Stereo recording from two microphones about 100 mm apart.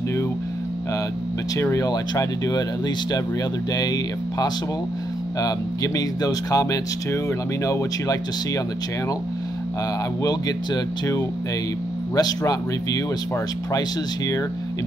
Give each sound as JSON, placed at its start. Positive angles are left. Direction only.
{"t": 1.6, "sound": "speech", "side_deg": 30}
{"t": 3.7, "sound": "speech", "side_deg": 40}
{"t": 10.2, "sound": "speech", "side_deg": 40}
{"t": 12.2, "sound": "speech", "side_deg": 40}